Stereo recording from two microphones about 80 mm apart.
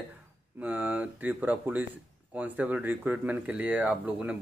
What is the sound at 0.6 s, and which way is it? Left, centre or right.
Speech, centre.